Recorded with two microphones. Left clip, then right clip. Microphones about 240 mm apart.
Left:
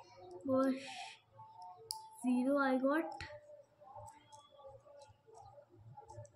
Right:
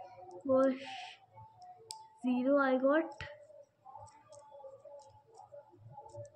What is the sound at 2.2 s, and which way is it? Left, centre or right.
Speech, centre.